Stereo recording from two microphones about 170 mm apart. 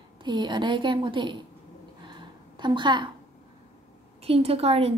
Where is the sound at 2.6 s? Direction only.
25° right (ahead or behind).